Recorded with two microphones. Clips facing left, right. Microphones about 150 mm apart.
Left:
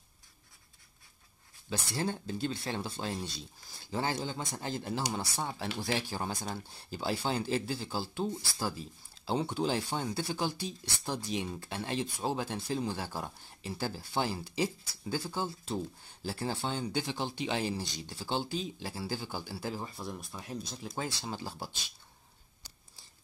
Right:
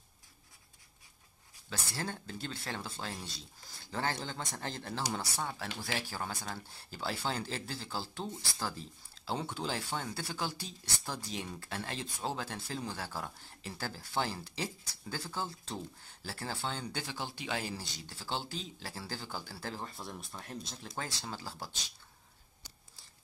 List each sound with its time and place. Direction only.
1.7 s speech: 20° left (ahead or behind)
20.9 s speech: 15° left (ahead or behind)